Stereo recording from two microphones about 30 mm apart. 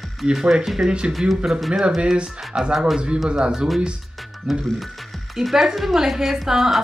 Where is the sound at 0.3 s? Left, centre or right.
Centre.